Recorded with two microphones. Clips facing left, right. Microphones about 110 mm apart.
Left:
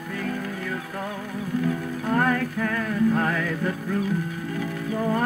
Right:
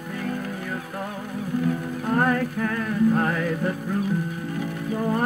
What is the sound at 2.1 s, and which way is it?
Music, 20° right (ahead or behind).